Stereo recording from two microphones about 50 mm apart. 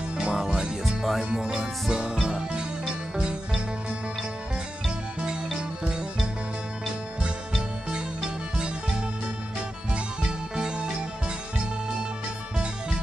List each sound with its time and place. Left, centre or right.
0.2 s music: centre
0.8 s music: centre
1.3 s music: centre
10.5 s music: centre